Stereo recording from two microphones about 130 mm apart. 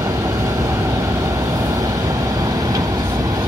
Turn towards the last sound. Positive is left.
turn(degrees=-30)  # may be behind; listen again after turning